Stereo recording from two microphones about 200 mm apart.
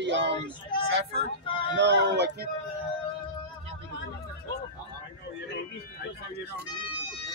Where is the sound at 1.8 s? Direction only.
60° right (ahead or behind).